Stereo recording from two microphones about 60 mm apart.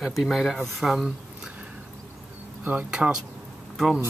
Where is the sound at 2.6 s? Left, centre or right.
Right.